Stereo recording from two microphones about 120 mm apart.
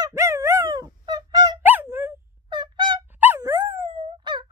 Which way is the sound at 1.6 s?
15° right (ahead or behind).